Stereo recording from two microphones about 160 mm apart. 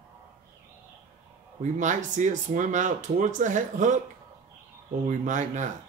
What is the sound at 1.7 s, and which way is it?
Speech, 50° right (ahead or behind).